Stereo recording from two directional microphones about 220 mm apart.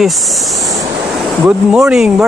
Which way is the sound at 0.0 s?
Centre (ahead or behind).